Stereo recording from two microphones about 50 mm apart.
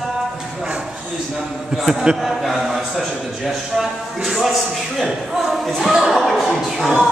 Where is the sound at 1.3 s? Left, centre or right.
Centre.